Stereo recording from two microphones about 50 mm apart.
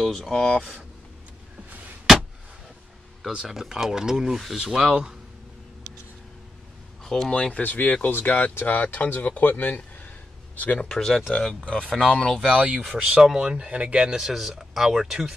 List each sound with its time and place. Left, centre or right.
0.0 s speech: centre
3.3 s speech: centre
7.1 s speech: centre
7.5 s speech: left
8.5 s speech: left
10.5 s a sound: left
10.8 s speech: centre
12.5 s speech: right
12.8 s speech: centre
13.7 s speech: right
14.1 s speech: centre